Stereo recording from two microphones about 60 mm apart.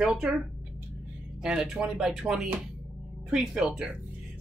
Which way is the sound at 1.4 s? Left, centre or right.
Centre.